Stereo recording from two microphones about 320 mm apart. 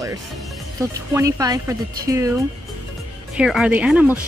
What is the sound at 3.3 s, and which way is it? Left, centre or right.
Speech, centre.